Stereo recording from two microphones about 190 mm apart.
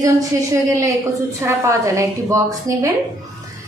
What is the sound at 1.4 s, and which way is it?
A woman's voice, 15° right (ahead or behind).